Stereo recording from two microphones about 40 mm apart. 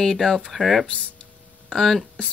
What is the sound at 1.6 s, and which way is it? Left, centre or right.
Speech, centre.